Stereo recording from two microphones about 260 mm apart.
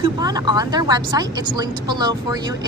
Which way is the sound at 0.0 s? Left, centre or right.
Centre.